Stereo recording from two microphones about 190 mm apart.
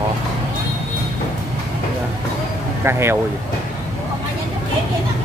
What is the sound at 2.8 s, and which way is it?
Speech, 15° right (ahead or behind).